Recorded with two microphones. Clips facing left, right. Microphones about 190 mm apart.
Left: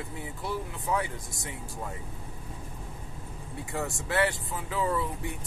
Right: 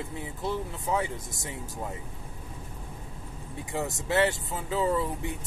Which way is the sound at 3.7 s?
20° right (ahead or behind).